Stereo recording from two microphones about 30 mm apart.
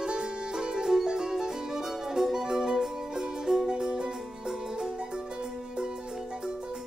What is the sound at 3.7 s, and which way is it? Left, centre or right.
Music, right.